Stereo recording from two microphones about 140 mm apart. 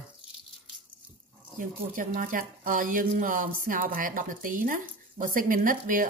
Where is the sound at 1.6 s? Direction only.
75° right (ahead or behind).